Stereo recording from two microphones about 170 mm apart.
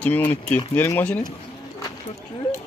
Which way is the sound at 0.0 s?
10° left (ahead or behind).